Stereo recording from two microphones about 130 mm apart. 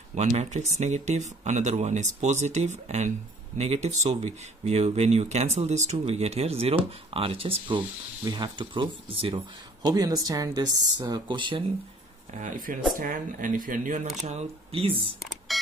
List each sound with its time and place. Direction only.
0.1 s speech: 60° right (ahead or behind); by 7.5 s 45° right (ahead or behind)
8.2 s speech: 35° right (ahead or behind)
9.8 s speech: 30° right (ahead or behind)
12.4 s speech: 85° right
14.2 s speech: 55° right (ahead or behind)
15.5 s music: centre (ahead or behind)